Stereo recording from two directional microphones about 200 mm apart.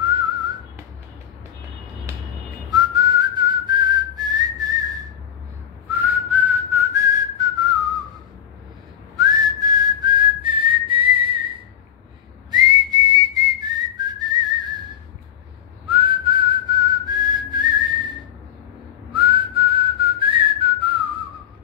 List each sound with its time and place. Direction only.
2.1 s music: 15° right (ahead or behind)
2.7 s whistling: 20° right (ahead or behind)
5.9 s whistling: 10° right (ahead or behind)
9.1 s whistling: 20° right (ahead or behind)
12.4 s whistling: 20° right (ahead or behind)
15.9 s whistling: 25° right (ahead or behind)
19.1 s whistling: 25° right (ahead or behind)